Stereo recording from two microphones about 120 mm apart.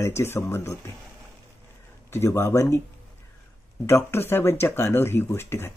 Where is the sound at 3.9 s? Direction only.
20° left (ahead or behind).